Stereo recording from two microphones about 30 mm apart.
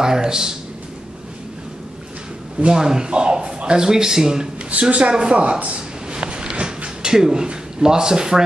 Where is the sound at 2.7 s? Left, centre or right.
Right.